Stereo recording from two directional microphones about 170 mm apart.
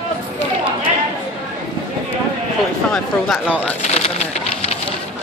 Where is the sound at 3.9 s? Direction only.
40° left (ahead or behind).